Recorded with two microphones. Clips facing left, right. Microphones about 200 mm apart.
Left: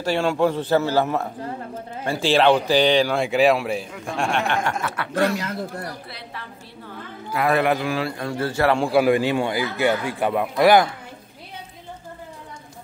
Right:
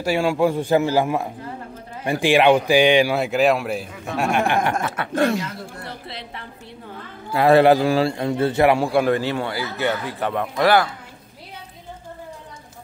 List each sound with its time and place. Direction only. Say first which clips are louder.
0.0 s a man's voice: right 1 dB; 10° right (ahead or behind)
4.6 s a man's voice: right 3 dB; 20° right (ahead or behind)
8.7 s speech: left 1 dB; centre (ahead or behind)